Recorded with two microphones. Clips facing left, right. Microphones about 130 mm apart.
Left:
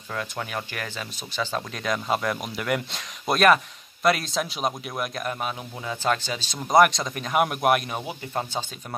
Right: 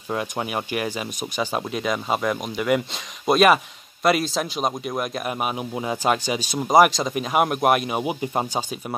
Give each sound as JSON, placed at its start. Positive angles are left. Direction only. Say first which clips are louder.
{"t": 0.1, "sound": "speech", "louder": "right 5 dB", "side_deg": -20}
{"t": 6.0, "sound": "speech", "louder": "right 2 dB", "side_deg": -15}
{"t": 8.0, "sound": "speech", "louder": "right 6 dB", "side_deg": -15}